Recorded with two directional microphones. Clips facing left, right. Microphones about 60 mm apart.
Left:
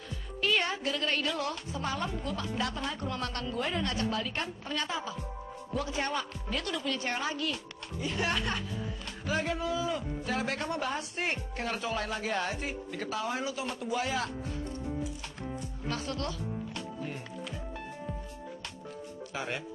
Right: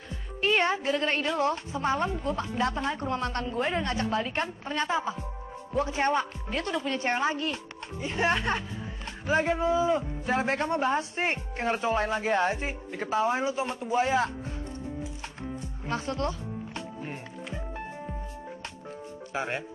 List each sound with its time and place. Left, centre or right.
0.1 s a woman's voice: right
15.6 s music: right
19.3 s a woman's voice: right